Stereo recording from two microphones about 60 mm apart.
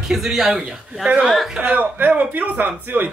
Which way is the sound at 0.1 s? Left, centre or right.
Centre.